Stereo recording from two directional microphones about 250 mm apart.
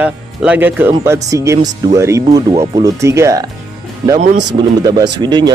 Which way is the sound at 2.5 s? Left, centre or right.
Right.